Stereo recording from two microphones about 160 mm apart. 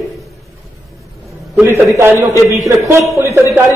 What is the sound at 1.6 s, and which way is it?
A man's voice, 15° right (ahead or behind).